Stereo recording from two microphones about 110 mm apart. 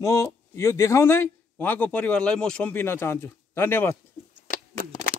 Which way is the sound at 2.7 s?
20° left (ahead or behind).